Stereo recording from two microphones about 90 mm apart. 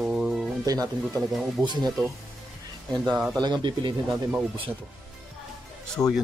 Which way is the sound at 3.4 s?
55° right (ahead or behind).